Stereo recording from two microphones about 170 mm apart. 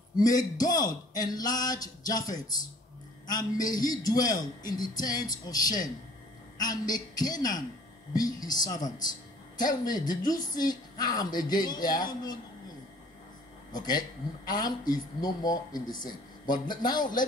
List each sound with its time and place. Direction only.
0.1 s a man's voice: 20° left (ahead or behind)
9.8 s a man's voice: 25° left (ahead or behind)
13.7 s a man's voice: 25° left (ahead or behind)